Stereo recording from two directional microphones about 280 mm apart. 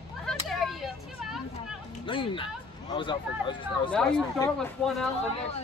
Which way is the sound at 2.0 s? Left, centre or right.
Centre.